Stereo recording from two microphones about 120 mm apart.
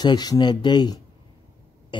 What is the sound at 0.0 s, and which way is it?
Speech, 35° left (ahead or behind).